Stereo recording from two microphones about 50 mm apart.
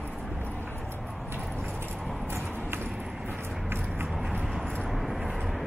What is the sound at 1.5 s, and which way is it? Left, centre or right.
Keys jangling, centre.